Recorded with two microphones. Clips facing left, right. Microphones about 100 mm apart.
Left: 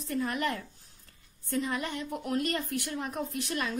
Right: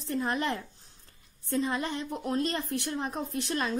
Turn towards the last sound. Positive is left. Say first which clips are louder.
# right 2 dB
turn(degrees=-30)  # may be behind; listen again after turning